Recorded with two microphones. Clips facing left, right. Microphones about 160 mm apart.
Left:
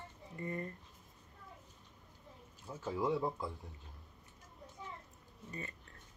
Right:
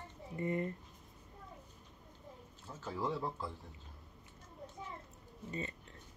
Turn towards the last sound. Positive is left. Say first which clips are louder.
# right 5 dB
turn(degrees=-20)  # may be behind; listen again after turning